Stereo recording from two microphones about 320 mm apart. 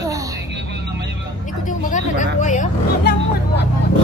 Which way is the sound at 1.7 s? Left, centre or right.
Left.